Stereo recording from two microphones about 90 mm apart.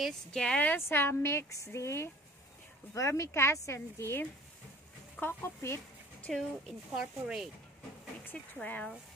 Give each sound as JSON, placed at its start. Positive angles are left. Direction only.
{"t": 0.3, "sound": "speech", "side_deg": 10}
{"t": 6.3, "sound": "speech", "side_deg": 5}
{"t": 7.0, "sound": "speech", "side_deg": -10}
{"t": 8.3, "sound": "speech", "side_deg": 10}